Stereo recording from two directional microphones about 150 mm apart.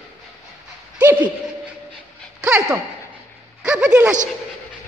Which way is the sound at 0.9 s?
10° right (ahead or behind).